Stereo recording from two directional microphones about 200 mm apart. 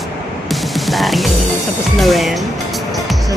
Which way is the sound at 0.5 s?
Centre (ahead or behind).